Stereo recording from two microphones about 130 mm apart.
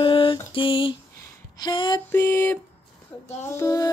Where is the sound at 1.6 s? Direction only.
35° left (ahead or behind).